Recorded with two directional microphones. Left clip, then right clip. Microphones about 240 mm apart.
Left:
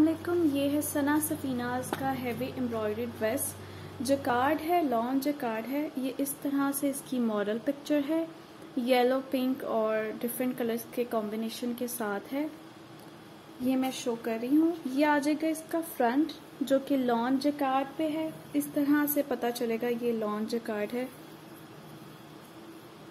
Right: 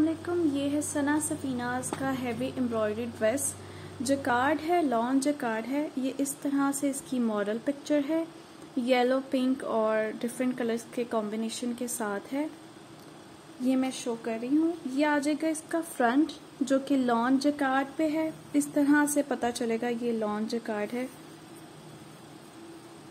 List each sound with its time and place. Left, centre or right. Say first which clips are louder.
0.5 s a woman's voice: left 1 dB; centre
2.0 s a woman's voice: even; right
13.7 s a woman's voice: right 1 dB; centre